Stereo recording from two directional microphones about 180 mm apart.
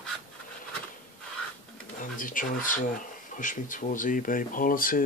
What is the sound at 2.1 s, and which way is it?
Speech, 50° left (ahead or behind).